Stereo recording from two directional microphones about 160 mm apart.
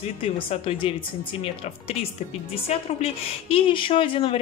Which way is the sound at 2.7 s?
40° left (ahead or behind).